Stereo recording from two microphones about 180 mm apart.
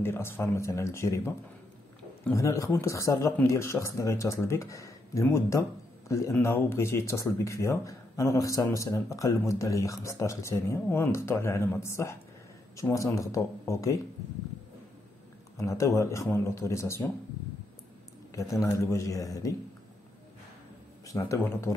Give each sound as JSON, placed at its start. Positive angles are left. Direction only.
{"t": 0.0, "sound": "speech", "side_deg": 15}
{"t": 15.5, "sound": "speech", "side_deg": 15}
{"t": 18.3, "sound": "a man's voice", "side_deg": 20}
{"t": 21.1, "sound": "speech", "side_deg": 15}